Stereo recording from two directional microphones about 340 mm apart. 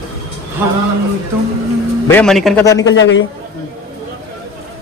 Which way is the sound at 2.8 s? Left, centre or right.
Left.